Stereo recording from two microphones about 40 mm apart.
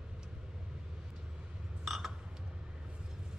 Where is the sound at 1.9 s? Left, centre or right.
Centre.